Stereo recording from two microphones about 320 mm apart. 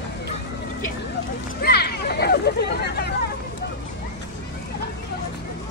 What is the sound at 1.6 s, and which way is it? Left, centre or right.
Hubbub, left.